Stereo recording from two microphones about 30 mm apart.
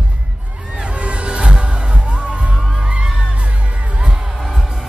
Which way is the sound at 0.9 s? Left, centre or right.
Right.